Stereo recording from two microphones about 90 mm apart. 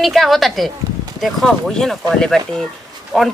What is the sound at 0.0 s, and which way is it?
A woman's voice, centre (ahead or behind).